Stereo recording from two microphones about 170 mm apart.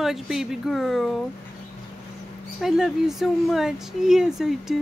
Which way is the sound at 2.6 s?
5° right (ahead or behind).